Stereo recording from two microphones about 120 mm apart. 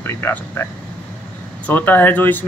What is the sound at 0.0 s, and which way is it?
Speech, 20° left (ahead or behind).